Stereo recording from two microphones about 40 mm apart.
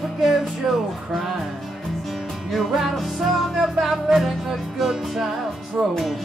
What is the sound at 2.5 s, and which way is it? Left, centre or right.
Music, centre.